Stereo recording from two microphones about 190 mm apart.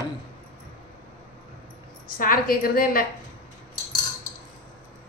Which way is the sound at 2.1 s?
45° left (ahead or behind).